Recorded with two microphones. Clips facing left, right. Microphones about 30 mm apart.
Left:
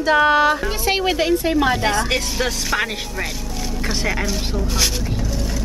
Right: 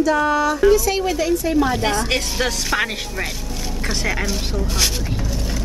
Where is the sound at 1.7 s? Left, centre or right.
Centre.